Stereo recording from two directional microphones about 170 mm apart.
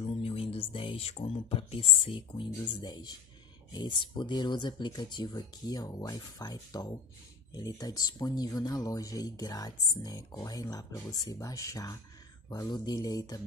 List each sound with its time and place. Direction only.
0.2 s speech: 35° left (ahead or behind)